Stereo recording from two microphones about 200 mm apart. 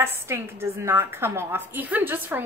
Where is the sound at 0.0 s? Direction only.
10° right (ahead or behind).